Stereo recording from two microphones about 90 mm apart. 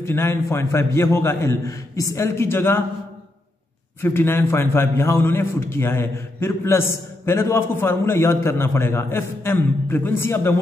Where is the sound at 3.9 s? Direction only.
25° left (ahead or behind).